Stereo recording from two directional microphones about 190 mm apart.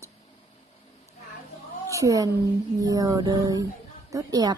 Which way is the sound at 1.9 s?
15° right (ahead or behind).